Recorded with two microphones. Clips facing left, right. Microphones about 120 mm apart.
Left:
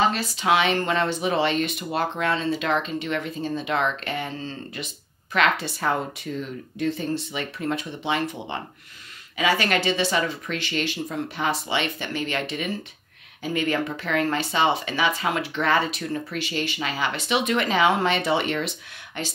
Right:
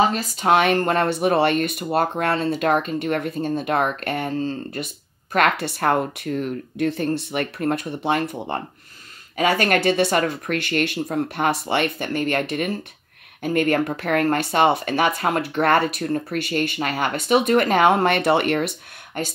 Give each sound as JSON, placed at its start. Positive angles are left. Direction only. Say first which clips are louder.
{"t": 0.1, "sound": "speech", "louder": "right 3 dB", "side_deg": -45}